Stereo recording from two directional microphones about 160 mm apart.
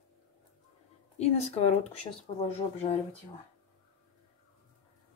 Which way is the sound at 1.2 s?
40° left (ahead or behind).